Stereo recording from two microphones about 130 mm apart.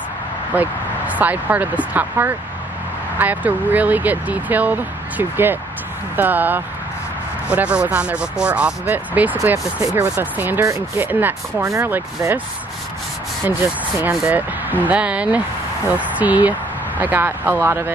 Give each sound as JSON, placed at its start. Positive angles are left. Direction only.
{"t": 0.6, "sound": "speech", "side_deg": -10}
{"t": 14.1, "sound": "speech", "side_deg": -10}